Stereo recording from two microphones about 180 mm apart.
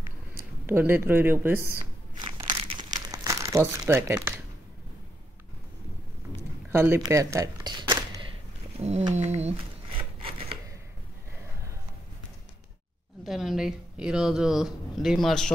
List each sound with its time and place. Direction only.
0.7 s speech: 10° right (ahead or behind)
2.1 s crumpling: 25° right (ahead or behind)
3.9 s speech: 10° right (ahead or behind)
6.7 s speech: 15° right (ahead or behind)
8.7 s a sound: 35° right (ahead or behind)
13.2 s a woman's voice: centre (ahead or behind)